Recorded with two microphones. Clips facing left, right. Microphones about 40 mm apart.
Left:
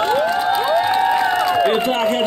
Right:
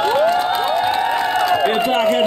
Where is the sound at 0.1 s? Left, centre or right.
Right.